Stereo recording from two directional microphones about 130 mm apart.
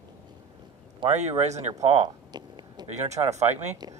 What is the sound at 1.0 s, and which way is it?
Speech, 60° right (ahead or behind).